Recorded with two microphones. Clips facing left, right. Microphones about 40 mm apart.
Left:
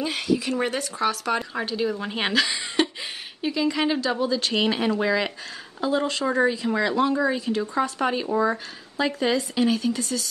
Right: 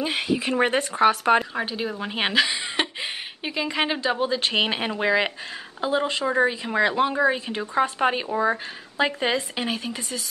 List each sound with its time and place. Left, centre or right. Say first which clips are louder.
0.0 s speech: even; right
1.5 s a woman's voice: left 2 dB; centre